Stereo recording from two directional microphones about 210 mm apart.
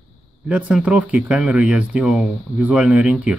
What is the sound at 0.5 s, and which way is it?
Speech, 5° right (ahead or behind).